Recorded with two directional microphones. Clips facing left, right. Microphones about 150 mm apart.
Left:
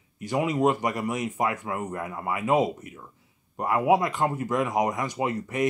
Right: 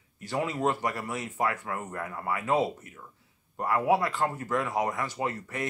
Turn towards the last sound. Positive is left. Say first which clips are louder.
# left 5 dB
turn(degrees=15)  # may be behind; listen again after turning